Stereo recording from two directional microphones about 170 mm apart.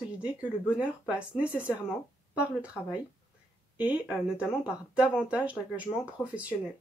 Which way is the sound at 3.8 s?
10° right (ahead or behind).